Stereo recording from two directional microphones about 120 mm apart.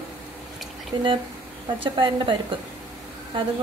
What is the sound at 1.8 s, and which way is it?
Speech, 45° right (ahead or behind).